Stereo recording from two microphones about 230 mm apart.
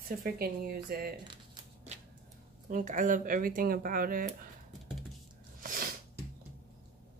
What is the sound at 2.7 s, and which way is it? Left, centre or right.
A woman's voice, right.